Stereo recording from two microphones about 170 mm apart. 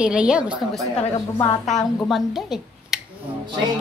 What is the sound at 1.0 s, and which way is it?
Speech, 35° left (ahead or behind).